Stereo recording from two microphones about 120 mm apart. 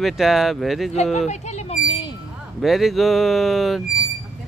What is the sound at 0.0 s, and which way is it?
Speech, centre (ahead or behind).